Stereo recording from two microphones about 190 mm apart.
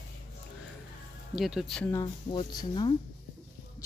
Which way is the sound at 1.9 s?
20° left (ahead or behind).